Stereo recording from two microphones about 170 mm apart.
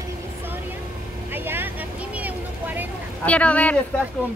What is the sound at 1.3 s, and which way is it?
Vehicle, 10° right (ahead or behind).